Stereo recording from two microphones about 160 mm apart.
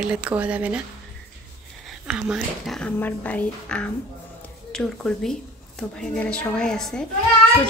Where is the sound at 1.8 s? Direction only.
5° right (ahead or behind).